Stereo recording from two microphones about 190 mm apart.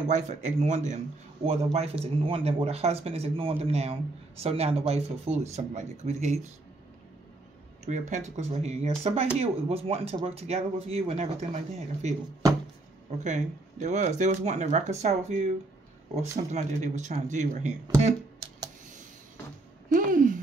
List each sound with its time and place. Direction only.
0.1 s speech: 40° right (ahead or behind)
7.8 s speech: 40° right (ahead or behind)
19.9 s a sound: 45° right (ahead or behind)